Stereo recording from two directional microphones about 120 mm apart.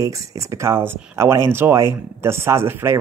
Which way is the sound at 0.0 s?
30° right (ahead or behind).